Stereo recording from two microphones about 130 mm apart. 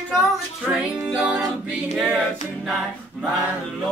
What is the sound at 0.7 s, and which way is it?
Music, 10° right (ahead or behind).